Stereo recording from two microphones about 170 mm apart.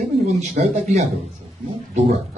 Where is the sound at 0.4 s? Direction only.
40° right (ahead or behind).